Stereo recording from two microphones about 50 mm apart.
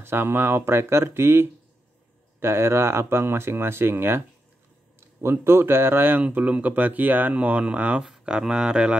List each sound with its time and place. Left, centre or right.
0.0 s speech: right
6.2 s speech: right
8.0 s speech: centre